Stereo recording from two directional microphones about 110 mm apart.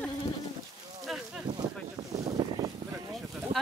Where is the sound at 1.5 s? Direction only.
40° right (ahead or behind).